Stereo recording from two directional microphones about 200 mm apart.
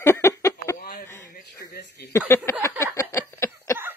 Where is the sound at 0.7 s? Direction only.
45° left (ahead or behind).